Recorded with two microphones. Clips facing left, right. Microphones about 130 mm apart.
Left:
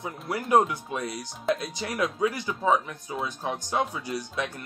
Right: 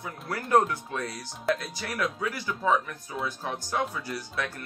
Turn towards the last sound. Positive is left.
turn(degrees=20)  # may be behind; listen again after turning